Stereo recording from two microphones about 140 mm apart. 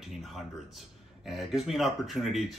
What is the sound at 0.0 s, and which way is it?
Speech, centre (ahead or behind).